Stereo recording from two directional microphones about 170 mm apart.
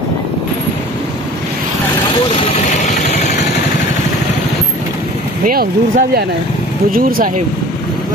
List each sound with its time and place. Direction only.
2.3 s vehicle: 35° left (ahead or behind)
5.4 s speech: 55° right (ahead or behind)